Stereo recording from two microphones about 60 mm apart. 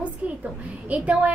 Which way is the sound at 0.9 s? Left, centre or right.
Right.